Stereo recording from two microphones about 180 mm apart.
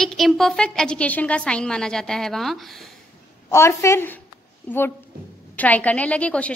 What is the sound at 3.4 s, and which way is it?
A woman's voice, 15° left (ahead or behind).